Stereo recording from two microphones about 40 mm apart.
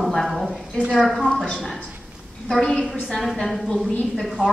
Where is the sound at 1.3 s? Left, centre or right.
Left.